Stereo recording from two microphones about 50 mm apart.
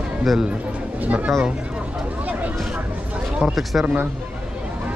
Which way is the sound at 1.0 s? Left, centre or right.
Right.